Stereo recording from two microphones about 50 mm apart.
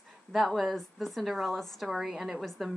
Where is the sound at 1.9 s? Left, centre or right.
Centre.